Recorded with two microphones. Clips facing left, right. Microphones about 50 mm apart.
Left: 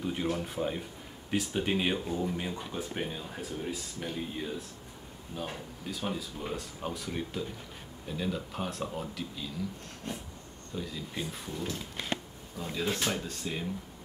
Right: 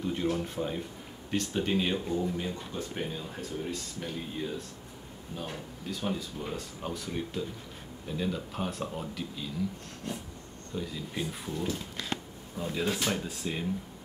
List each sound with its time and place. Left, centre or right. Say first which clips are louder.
0.0 s speech: right 2 dB; centre
2.3 s speech: even; centre
10.8 s speech: right 2 dB; centre
12.0 s speech: left 3 dB; left
12.6 s speech: right 1 dB; centre